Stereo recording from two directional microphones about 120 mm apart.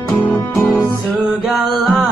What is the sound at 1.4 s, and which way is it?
Music, centre (ahead or behind).